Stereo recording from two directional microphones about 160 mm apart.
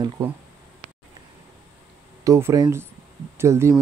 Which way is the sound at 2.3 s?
20° right (ahead or behind).